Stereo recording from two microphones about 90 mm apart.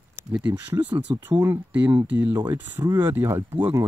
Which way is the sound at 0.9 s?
55° right (ahead or behind).